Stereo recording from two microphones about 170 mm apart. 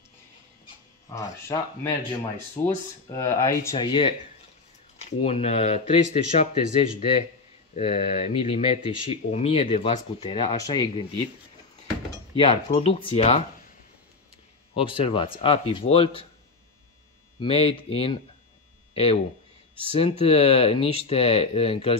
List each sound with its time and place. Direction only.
1.1 s speech: 20° left (ahead or behind)
3.7 s speech: 30° left (ahead or behind)
5.2 s speech: 35° left (ahead or behind)
12.4 s speech: 30° left (ahead or behind)
14.8 s speech: 30° left (ahead or behind)
17.4 s speech: 35° left (ahead or behind)
19.9 s speech: 35° left (ahead or behind)